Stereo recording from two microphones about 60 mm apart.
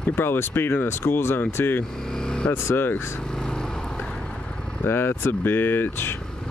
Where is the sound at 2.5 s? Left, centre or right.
Left.